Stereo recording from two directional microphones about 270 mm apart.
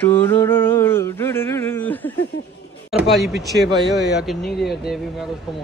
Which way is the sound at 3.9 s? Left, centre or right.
Left.